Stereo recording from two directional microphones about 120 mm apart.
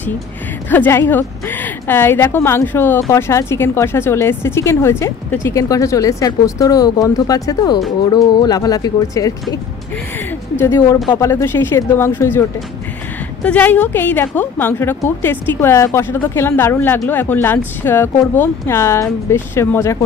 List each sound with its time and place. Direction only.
0.7 s a woman's voice: 15° left (ahead or behind)
10.6 s a woman's voice: 20° left (ahead or behind)